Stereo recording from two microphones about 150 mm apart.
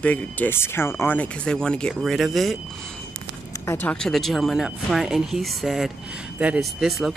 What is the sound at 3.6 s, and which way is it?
Speech, 10° left (ahead or behind).